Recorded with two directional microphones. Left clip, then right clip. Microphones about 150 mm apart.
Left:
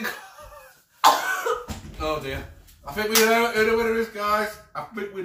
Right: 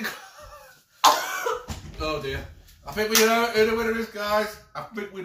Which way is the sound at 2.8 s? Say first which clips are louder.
Even; 5° left (ahead or behind).